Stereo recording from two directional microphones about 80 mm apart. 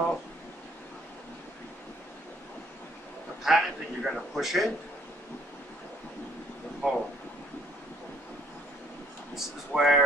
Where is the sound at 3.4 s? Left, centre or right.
Centre.